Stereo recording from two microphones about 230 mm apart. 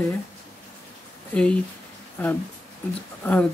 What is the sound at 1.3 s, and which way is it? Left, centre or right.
Speech, centre.